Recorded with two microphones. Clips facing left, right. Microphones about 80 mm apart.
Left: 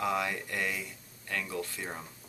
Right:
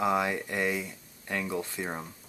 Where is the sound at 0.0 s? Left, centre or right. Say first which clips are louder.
Right 4 dB; right.